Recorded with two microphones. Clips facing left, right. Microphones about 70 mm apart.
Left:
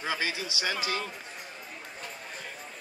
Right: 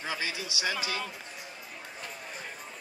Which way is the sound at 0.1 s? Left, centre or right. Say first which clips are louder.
Left 3 dB; left.